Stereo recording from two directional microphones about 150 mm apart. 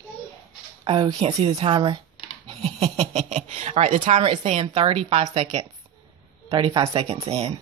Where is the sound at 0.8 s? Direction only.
35° right (ahead or behind).